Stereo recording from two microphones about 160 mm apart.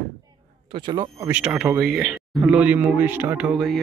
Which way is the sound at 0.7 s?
30° right (ahead or behind).